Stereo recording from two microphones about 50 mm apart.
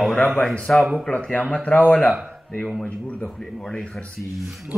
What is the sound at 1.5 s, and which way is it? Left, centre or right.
Speech, left.